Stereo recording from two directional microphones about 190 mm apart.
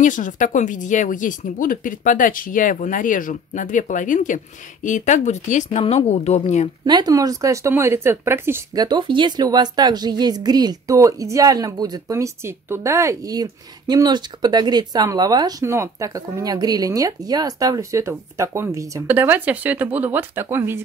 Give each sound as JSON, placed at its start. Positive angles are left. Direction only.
{"t": 0.0, "sound": "a woman's voice", "side_deg": 40}
{"t": 6.8, "sound": "speech", "side_deg": -20}